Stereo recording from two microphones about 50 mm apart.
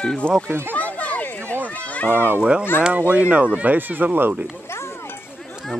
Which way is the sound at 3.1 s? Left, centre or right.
Right.